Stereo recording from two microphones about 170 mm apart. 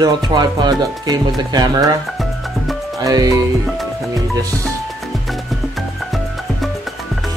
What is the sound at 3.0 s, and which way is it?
Music, 20° right (ahead or behind).